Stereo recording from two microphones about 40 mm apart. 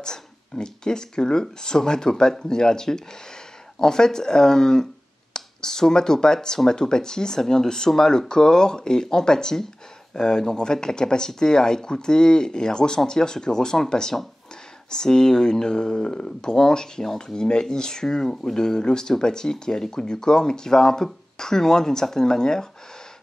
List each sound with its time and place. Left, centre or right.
0.0 s speech: centre